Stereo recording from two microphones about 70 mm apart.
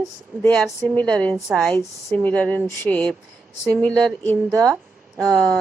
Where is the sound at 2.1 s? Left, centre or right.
Centre.